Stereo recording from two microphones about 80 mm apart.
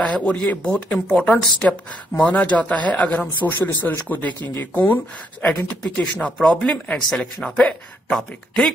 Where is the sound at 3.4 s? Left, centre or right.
Left.